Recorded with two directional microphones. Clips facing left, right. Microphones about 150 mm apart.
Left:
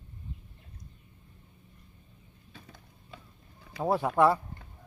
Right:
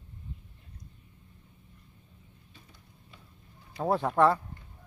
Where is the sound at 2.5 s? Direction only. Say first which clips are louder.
Left 7 dB; 90° left.